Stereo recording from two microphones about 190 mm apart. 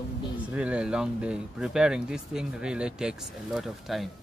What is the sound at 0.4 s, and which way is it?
Speech, 5° right (ahead or behind).